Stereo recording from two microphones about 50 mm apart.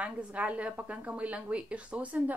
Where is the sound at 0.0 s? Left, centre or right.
Right.